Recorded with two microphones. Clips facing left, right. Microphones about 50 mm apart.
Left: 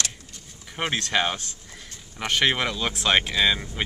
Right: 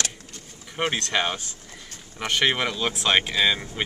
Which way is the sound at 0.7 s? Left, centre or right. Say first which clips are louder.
Even; centre.